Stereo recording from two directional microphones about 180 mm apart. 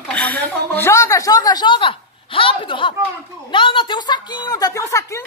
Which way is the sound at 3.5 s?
25° left (ahead or behind).